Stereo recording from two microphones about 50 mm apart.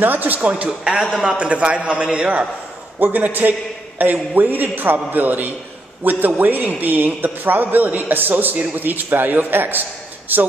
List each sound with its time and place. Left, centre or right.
0.0 s a man's voice: right
0.7 s a man's voice: centre
1.4 s a man's voice: right